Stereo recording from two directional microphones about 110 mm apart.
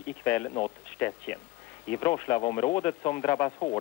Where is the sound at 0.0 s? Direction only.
15° left (ahead or behind).